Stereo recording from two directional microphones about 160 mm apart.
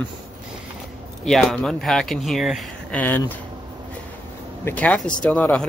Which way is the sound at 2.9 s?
10° left (ahead or behind).